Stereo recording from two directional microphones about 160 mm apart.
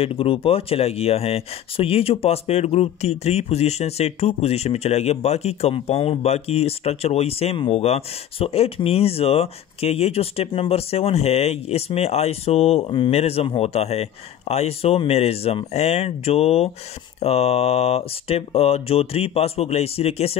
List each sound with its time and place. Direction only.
0.0 s speech: 35° left (ahead or behind)